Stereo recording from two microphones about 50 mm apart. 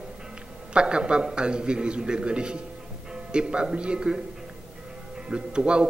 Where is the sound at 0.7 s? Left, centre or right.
Centre.